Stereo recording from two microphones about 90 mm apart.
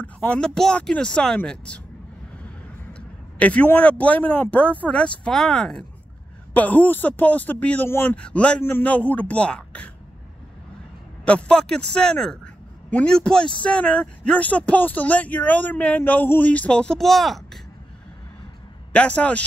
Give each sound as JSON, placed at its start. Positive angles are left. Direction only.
{"t": 0.0, "sound": "speech", "side_deg": 10}
{"t": 2.9, "sound": "speech", "side_deg": 15}
{"t": 6.5, "sound": "speech", "side_deg": 15}
{"t": 8.2, "sound": "speech", "side_deg": 15}
{"t": 11.2, "sound": "speech", "side_deg": 10}
{"t": 18.9, "sound": "speech", "side_deg": 15}